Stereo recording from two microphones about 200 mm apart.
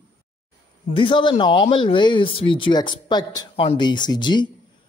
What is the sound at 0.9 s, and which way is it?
A man's voice, 25° left (ahead or behind).